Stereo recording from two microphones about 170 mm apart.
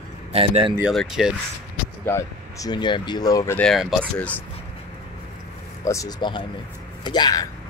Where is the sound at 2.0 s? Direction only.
20° left (ahead or behind).